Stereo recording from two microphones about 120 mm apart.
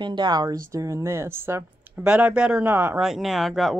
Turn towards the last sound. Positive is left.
turn(degrees=0)  # may be behind; listen again after turning